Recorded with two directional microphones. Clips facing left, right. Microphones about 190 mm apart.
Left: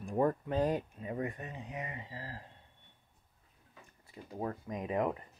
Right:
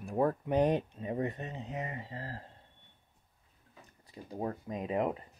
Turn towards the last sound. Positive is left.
turn(degrees=-20)  # may be behind; listen again after turning